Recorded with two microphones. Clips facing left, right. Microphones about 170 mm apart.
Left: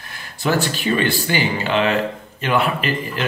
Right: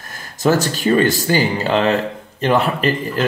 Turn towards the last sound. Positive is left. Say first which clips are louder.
# right 4 dB
turn(degrees=-40)  # may be behind; listen again after turning